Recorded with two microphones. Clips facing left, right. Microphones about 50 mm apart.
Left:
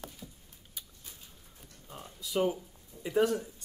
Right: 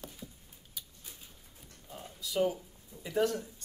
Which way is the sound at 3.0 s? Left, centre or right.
Centre.